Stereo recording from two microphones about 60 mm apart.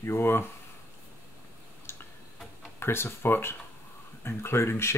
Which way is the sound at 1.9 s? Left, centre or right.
Left.